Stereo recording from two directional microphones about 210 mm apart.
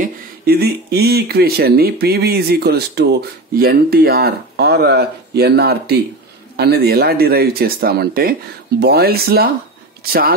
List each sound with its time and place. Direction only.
0.0 s speech: 50° right (ahead or behind)